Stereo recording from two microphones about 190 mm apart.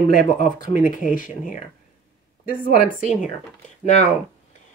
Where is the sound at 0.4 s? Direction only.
40° left (ahead or behind).